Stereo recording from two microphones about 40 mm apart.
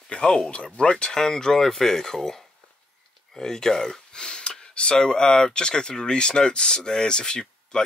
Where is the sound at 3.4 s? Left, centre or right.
Centre.